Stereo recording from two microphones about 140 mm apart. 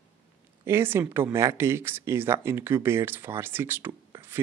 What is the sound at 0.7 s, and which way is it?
Speech, 15° right (ahead or behind).